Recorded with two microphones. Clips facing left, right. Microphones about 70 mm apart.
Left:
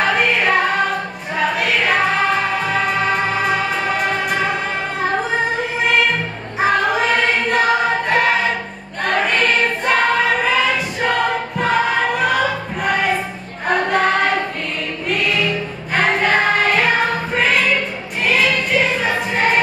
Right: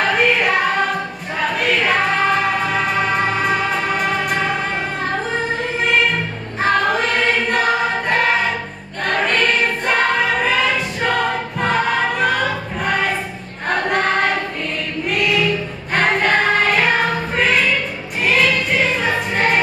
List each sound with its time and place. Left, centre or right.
0.0 s music: centre
6.6 s music: centre
8.1 s choir: centre
15.0 s music: centre
17.4 s choir: centre